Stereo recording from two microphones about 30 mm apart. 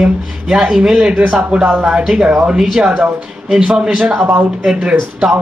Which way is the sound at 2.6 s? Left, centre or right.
Centre.